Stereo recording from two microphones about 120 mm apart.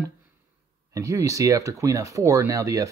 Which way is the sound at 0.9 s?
25° right (ahead or behind).